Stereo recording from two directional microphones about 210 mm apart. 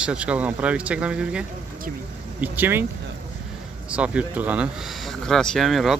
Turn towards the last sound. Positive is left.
turn(degrees=0)  # may be behind; listen again after turning